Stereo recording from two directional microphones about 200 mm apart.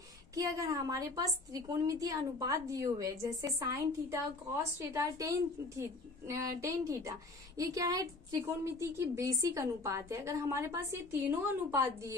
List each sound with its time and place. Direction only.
0.3 s a woman's voice: 15° right (ahead or behind)